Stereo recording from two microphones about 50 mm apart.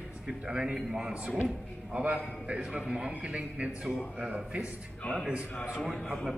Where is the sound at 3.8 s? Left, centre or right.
Centre.